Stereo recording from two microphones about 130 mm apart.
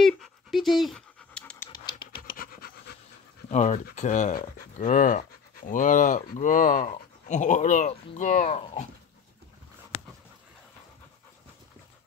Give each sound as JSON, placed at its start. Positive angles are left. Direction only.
{"t": 0.0, "sound": "dog", "side_deg": 0}
{"t": 1.4, "sound": "pant", "side_deg": 15}
{"t": 1.7, "sound": "pant", "side_deg": 35}
{"t": 3.4, "sound": "speech", "side_deg": 60}